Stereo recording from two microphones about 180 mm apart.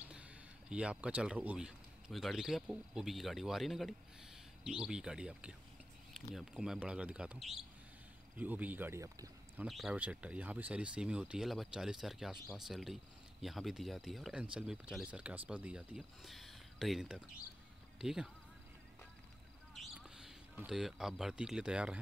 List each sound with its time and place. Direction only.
0.0 s speech: 5° right (ahead or behind)
9.7 s speech: centre (ahead or behind)
19.7 s speech: centre (ahead or behind)